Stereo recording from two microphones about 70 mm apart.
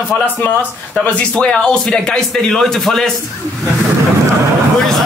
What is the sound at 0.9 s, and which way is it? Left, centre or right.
Speech, centre.